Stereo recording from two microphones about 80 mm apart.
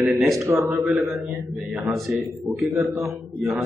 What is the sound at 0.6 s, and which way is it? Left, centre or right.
A man's voice, centre.